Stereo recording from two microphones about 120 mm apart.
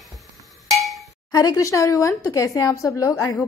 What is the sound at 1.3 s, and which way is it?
A woman's voice, 30° left (ahead or behind).